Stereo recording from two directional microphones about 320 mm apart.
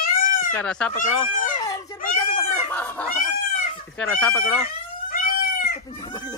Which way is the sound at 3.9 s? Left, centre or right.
Centre.